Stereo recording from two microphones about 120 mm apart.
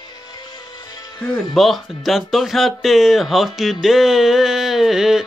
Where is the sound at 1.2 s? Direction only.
5° left (ahead or behind).